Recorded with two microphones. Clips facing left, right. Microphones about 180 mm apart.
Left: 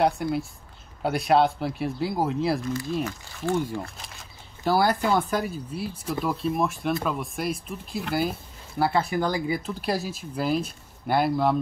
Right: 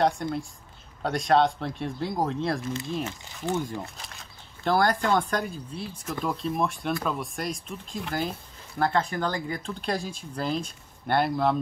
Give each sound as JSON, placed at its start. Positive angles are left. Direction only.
{"t": 0.0, "sound": "speech", "side_deg": 5}
{"t": 2.7, "sound": "speech", "side_deg": -25}
{"t": 4.0, "sound": "speech", "side_deg": 5}